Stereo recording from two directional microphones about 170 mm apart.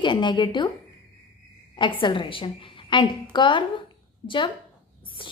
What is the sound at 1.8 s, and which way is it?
A woman's voice, 30° left (ahead or behind).